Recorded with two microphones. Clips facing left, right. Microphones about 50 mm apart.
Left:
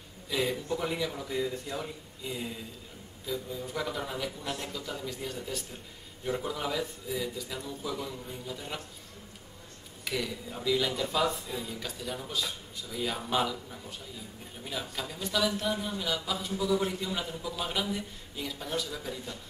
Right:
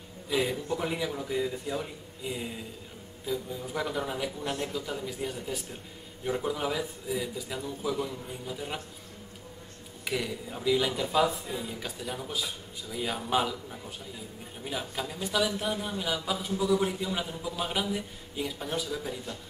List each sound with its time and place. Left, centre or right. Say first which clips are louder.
0.3 s speech: right 2 dB; centre
4.4 s a man's voice: right 4 dB; right
4.7 s speech: right 3 dB; centre
10.0 s speech: right 2 dB; centre